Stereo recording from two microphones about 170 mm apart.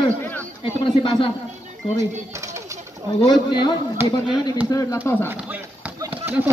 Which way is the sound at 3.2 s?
25° left (ahead or behind).